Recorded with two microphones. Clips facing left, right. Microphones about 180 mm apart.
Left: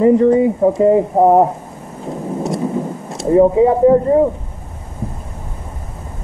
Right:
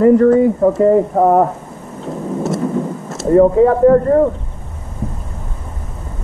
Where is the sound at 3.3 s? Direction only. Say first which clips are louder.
Right 1 dB; 10° left (ahead or behind).